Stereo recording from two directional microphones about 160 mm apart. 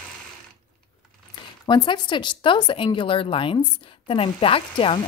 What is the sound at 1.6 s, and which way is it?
Speech, 30° left (ahead or behind).